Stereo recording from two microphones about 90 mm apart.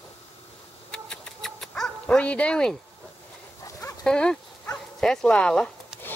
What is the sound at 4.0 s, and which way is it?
Speech, 10° left (ahead or behind).